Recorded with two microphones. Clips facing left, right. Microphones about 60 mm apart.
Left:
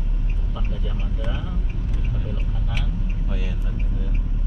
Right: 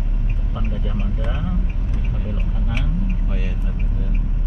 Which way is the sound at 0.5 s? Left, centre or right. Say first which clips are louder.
Right 5 dB; centre.